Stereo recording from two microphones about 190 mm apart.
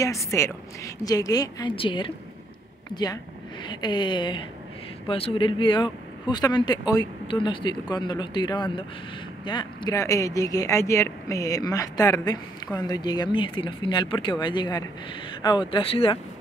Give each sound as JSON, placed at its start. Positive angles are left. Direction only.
{"t": 0.0, "sound": "speech", "side_deg": 15}